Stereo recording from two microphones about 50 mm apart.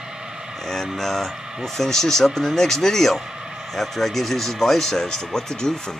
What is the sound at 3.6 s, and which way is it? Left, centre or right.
Speech, centre.